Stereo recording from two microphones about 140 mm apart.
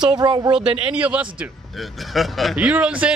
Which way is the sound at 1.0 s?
10° right (ahead or behind).